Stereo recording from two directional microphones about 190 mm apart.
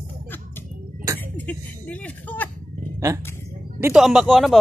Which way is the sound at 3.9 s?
Centre (ahead or behind).